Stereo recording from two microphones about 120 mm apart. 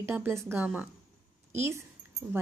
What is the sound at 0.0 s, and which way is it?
A woman's voice, 20° right (ahead or behind).